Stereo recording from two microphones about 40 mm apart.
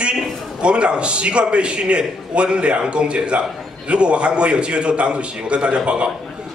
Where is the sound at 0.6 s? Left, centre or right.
Right.